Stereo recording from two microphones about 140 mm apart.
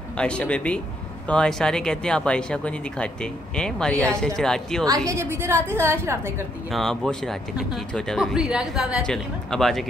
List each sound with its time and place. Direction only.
0.2 s speech: 10° left (ahead or behind)
4.8 s a woman's voice: 25° right (ahead or behind)
6.7 s speech: 5° left (ahead or behind)